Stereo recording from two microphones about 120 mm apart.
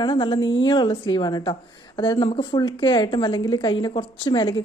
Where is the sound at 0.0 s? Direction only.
45° left (ahead or behind).